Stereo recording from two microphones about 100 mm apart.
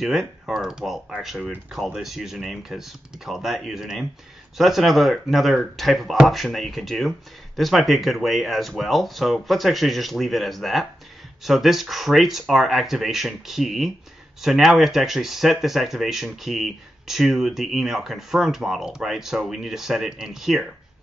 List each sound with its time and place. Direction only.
0.0 s speech: centre (ahead or behind)